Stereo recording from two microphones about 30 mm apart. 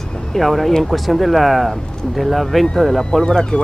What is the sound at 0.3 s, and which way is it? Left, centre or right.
Speech, centre.